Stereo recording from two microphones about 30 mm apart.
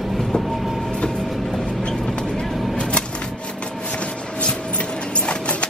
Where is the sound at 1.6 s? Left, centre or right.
Left.